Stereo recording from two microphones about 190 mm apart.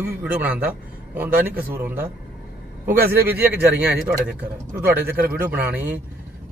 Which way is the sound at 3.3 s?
10° right (ahead or behind).